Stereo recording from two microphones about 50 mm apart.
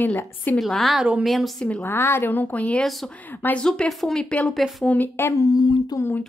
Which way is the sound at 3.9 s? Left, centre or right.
Centre.